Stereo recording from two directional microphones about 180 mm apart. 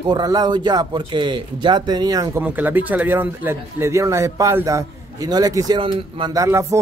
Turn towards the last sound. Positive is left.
turn(degrees=-15)  # may be behind; listen again after turning